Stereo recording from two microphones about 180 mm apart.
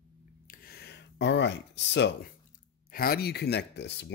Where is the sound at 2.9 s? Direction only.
55° left (ahead or behind); by 4.1 s 70° left (ahead or behind).